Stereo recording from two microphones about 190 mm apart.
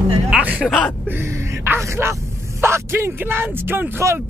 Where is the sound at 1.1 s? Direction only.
10° right (ahead or behind).